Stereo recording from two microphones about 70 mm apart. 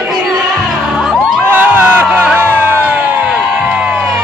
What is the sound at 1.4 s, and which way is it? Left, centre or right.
Crowd, right.